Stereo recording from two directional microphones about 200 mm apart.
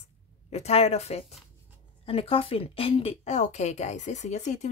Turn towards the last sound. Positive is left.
turn(degrees=35)  # may be behind; listen again after turning